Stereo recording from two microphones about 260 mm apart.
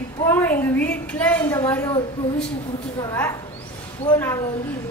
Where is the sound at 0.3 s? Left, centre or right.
Centre.